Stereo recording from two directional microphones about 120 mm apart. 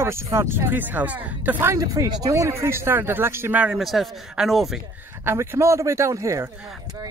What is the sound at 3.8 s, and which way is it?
Speech, centre (ahead or behind).